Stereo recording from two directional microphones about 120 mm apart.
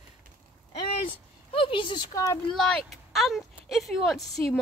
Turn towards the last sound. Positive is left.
turn(degrees=0)  # may be behind; listen again after turning